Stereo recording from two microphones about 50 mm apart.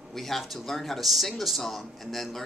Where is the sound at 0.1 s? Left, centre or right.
Centre.